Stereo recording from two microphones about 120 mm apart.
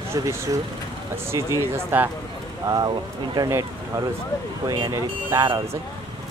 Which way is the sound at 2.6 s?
35° right (ahead or behind).